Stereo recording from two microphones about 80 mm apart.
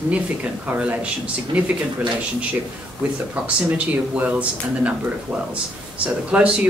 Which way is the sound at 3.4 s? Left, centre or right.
Centre.